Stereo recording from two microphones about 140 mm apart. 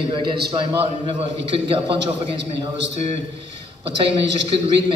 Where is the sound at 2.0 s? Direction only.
40° right (ahead or behind).